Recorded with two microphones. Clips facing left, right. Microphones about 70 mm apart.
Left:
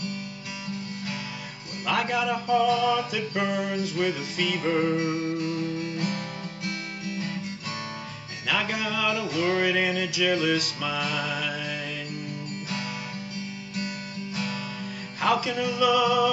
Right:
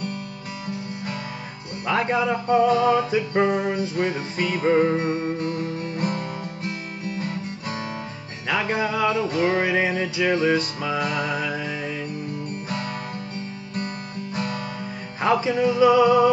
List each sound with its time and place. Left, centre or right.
1.9 s male singing: right
8.5 s music: right
12.6 s guitar: right
15.2 s music: right